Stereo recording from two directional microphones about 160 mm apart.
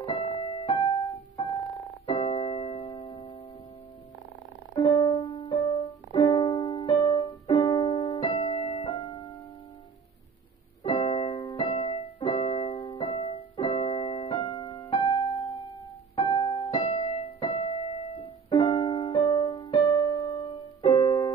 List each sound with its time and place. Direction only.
0.0 s music: 35° left (ahead or behind)
2.0 s keyboard: 30° left (ahead or behind)
3.1 s music: 35° left (ahead or behind)
4.7 s music: 25° left (ahead or behind)
7.4 s keyboard: 30° left (ahead or behind)
9.0 s keyboard: 25° left (ahead or behind)
10.8 s keyboard: 30° left (ahead or behind)
11.3 s music: 25° left (ahead or behind)
12.2 s keyboard: 35° left (ahead or behind)
12.7 s music: 30° left (ahead or behind)
13.6 s keyboard: 30° left (ahead or behind)
18.5 s music: 30° left (ahead or behind)
19.8 s keyboard: 25° left (ahead or behind)